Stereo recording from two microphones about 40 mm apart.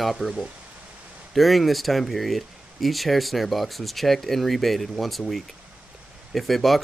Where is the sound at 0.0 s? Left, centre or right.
Centre.